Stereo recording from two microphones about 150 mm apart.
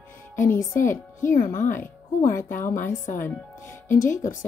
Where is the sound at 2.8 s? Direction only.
60° left (ahead or behind).